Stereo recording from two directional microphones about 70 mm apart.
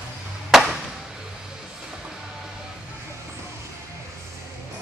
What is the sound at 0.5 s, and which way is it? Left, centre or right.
Chop, centre.